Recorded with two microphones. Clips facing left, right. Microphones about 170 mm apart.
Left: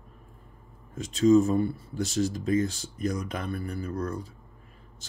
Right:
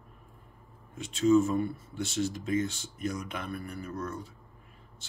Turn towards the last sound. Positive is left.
turn(degrees=35)  # may be behind; listen again after turning